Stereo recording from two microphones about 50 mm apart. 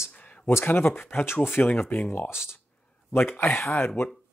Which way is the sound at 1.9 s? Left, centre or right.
Left.